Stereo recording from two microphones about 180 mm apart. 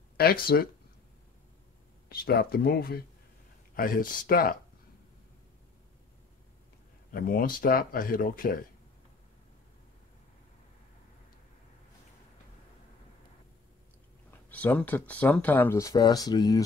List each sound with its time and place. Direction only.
0.2 s speech: 55° left (ahead or behind)
2.0 s speech: 60° left (ahead or behind)
7.1 s speech: 55° left (ahead or behind)
14.5 s speech: 10° left (ahead or behind)